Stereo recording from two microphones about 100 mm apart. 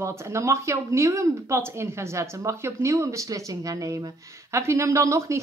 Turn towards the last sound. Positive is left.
turn(degrees=-30)  # may be behind; listen again after turning